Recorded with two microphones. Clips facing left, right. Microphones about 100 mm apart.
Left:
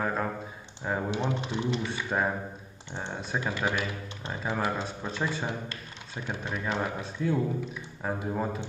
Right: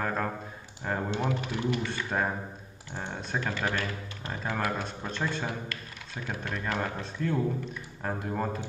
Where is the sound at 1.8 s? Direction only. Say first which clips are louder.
Left 1 dB; 5° left (ahead or behind).